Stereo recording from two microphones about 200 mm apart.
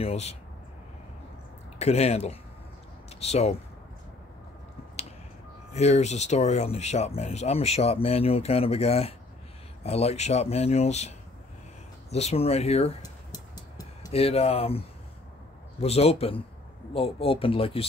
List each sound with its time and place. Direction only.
0.0 s speech: 30° left (ahead or behind)
1.8 s speech: 30° left (ahead or behind)
5.8 s speech: 35° left (ahead or behind)
13.0 s a sound: 20° left (ahead or behind)
15.8 s speech: 30° left (ahead or behind)